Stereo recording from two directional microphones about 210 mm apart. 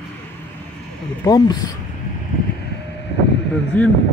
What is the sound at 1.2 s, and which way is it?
Speech, 20° left (ahead or behind).